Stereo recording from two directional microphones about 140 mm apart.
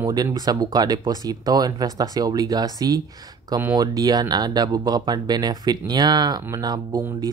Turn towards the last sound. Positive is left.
turn(degrees=-30)  # may be behind; listen again after turning